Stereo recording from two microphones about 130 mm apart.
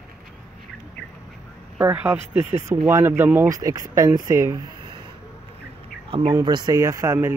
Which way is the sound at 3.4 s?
25° right (ahead or behind).